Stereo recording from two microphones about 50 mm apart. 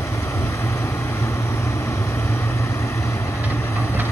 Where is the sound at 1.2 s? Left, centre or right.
Left.